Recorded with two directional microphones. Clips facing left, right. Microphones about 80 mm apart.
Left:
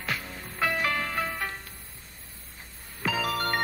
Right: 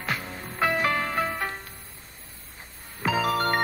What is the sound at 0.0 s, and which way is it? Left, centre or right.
Music, right.